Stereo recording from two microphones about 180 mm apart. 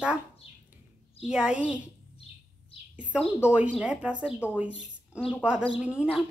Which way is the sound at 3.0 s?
5° right (ahead or behind).